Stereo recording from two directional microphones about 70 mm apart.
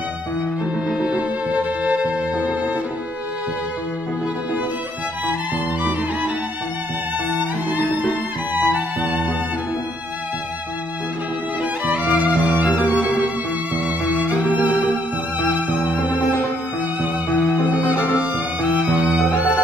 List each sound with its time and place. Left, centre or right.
0.8 s music: centre
7.3 s music: right
11.8 s music: right
17.3 s music: left
17.6 s music: right